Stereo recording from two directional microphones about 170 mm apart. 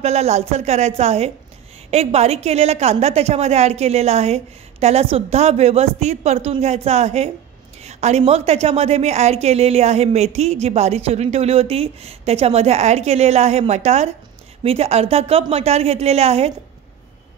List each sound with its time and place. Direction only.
0.0 s a woman's voice: 40° right (ahead or behind)
7.8 s a sound: 40° right (ahead or behind)
8.3 s a woman's voice: 40° right (ahead or behind)